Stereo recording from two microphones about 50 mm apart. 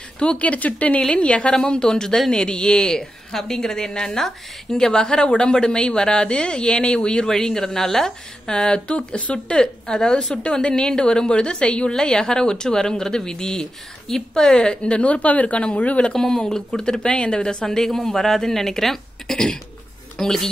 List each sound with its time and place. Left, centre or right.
0.2 s speech: left
1.5 s a woman's voice: centre
16.1 s a woman's voice: centre